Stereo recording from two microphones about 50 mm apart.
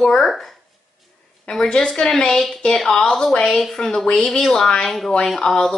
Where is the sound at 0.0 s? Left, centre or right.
Centre.